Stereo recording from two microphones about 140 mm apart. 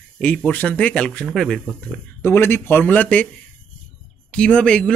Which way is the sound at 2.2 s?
15° left (ahead or behind).